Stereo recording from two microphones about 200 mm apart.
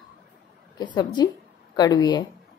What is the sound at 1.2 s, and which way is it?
A woman's voice, 20° left (ahead or behind).